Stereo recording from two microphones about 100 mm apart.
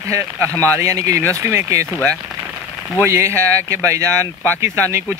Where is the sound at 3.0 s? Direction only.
30° right (ahead or behind).